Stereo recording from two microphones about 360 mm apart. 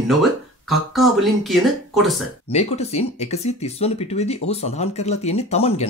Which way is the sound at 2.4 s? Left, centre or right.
Centre.